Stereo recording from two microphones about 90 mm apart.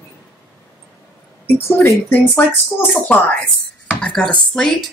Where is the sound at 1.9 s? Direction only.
25° left (ahead or behind).